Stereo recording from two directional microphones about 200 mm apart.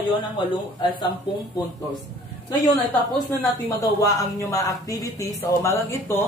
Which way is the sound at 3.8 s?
15° left (ahead or behind).